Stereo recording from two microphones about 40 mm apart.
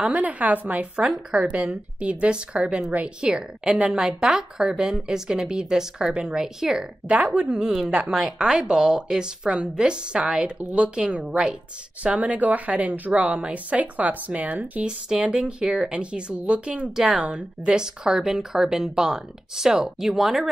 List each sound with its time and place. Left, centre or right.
0.1 s a woman's voice: right
0.9 s speech: centre
1.6 s a woman's voice: right
11.2 s a woman's voice: centre
12.0 s a woman's voice: right
15.2 s a woman's voice: right
16.9 s speech: centre
17.2 s speech: right; by 20.4 s centre